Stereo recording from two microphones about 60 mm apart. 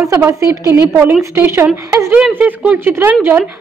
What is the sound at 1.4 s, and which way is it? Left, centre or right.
Speech, right.